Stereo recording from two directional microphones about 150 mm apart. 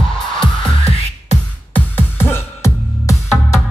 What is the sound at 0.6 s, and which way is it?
Music, 40° left (ahead or behind).